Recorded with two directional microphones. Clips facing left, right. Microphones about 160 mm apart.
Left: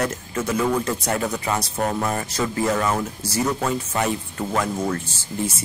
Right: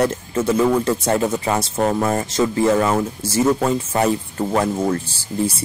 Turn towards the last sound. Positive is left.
turn(degrees=-30)  # may be behind; listen again after turning